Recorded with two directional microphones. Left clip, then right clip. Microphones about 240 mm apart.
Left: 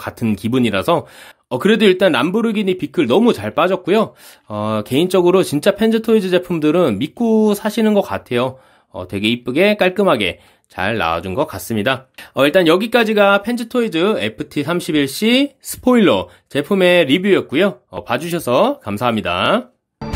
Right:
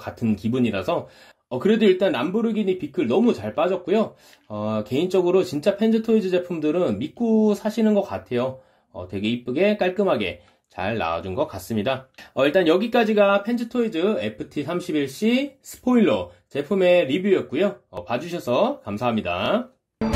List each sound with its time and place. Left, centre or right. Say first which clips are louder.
0.0 s speech: left 5 dB; left